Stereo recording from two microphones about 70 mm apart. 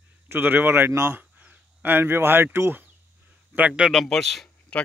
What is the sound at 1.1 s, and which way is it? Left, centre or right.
Speech, right.